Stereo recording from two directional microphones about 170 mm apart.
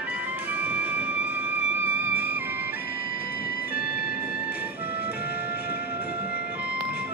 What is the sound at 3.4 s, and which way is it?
Music, 65° left (ahead or behind).